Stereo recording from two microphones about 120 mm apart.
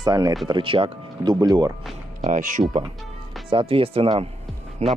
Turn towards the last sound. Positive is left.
turn(degrees=-65)  # may be behind; listen again after turning